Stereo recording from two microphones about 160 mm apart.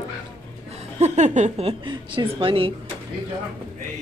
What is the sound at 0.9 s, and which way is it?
A woman's voice, 45° right (ahead or behind).